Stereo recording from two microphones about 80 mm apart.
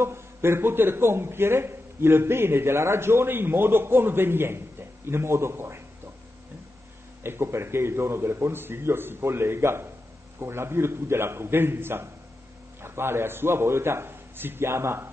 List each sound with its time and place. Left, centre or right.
0.0 s a man's voice: right
7.2 s a man's voice: right